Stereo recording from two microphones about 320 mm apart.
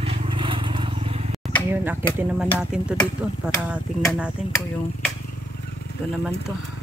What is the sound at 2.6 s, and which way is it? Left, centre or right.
Speech, centre.